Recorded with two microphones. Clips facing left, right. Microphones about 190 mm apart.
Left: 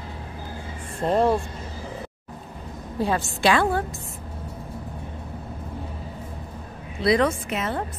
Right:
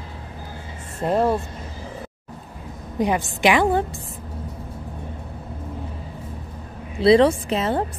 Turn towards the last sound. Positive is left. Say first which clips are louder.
# right 5 dB
turn(degrees=-30)  # may be behind; listen again after turning